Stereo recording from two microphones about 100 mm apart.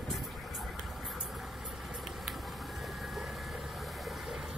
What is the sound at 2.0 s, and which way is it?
Vehicle, centre (ahead or behind).